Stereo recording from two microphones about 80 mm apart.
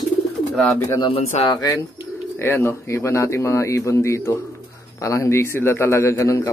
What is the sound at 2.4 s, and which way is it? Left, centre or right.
A man's voice, left.